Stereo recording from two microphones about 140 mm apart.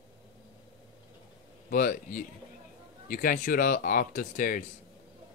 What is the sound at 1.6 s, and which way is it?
Speech, 80° left.